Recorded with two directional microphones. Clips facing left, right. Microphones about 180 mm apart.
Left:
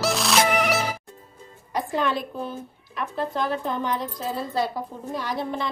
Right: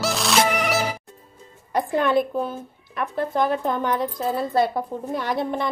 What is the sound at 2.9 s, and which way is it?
Speech, 55° right (ahead or behind).